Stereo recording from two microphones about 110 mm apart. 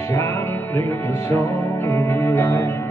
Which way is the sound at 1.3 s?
20° left (ahead or behind).